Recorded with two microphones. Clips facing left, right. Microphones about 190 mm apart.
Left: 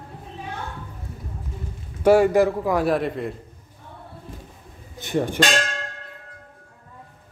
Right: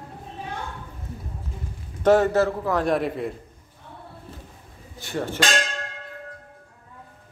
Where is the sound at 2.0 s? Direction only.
10° left (ahead or behind).